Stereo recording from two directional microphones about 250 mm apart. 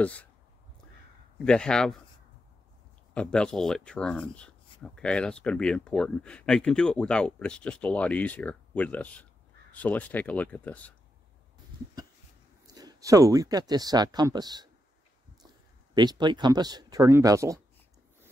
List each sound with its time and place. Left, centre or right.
0.0 s speech: centre
1.4 s speech: centre
3.2 s speech: centre
12.6 s speech: centre
15.9 s speech: centre